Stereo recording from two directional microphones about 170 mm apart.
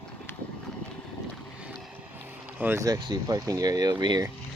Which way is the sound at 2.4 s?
10° right (ahead or behind).